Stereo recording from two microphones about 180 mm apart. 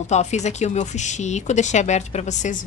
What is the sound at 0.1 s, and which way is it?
A woman's voice, 40° left (ahead or behind).